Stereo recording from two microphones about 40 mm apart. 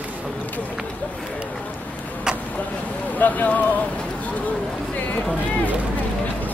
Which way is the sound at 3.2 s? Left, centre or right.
Left.